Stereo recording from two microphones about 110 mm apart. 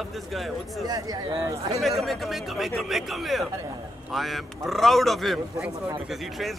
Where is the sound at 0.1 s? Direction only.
Centre (ahead or behind).